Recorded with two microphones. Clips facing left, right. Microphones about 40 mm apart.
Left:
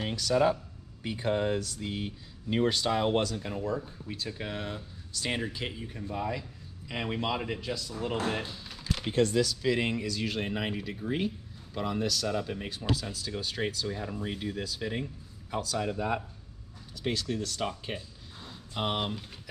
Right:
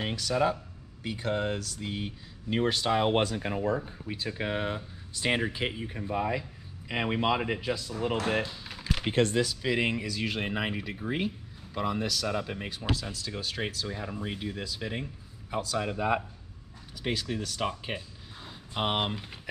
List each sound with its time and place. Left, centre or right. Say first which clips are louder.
0.0 s speech: left 1 dB; centre
3.2 s speech: right 2 dB; right; by 8.4 s centre
8.6 s computer keyboard: right 2 dB; centre
9.1 s speech: even; right; by 12.3 s centre
12.3 s speech: even; centre
12.6 s speech: even; centre